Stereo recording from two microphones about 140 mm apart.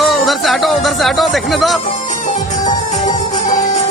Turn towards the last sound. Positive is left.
turn(degrees=60)  # may be behind; listen again after turning